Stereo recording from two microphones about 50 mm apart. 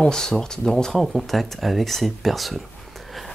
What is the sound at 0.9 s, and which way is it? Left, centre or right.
Speech, centre.